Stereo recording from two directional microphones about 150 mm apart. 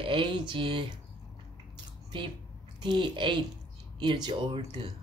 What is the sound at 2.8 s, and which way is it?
Speech, 30° right (ahead or behind).